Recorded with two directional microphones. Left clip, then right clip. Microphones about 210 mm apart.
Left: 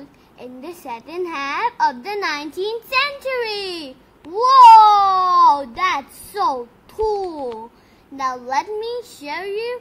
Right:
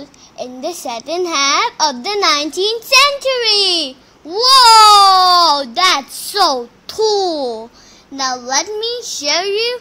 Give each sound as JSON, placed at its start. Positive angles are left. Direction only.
{"t": 0.6, "sound": "a child's voice", "side_deg": -40}